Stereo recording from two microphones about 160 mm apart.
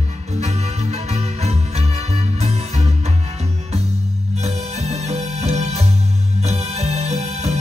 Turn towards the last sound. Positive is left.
turn(degrees=-45)  # may be behind; listen again after turning